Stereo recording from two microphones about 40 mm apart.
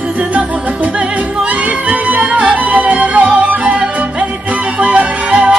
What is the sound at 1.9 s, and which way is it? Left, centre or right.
Music, right.